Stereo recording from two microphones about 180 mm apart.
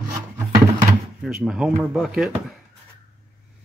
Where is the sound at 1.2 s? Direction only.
Centre (ahead or behind).